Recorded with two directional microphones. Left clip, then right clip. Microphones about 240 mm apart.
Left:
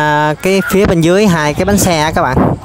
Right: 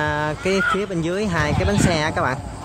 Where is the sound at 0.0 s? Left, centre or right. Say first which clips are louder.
Left 10 dB; left.